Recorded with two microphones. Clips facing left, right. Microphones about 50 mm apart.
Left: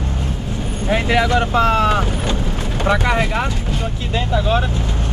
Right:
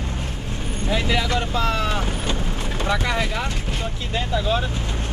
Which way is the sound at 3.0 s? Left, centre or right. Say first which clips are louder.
Left 6 dB; left.